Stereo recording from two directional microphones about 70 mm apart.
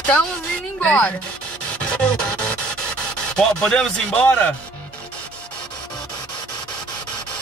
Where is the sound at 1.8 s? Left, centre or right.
Centre.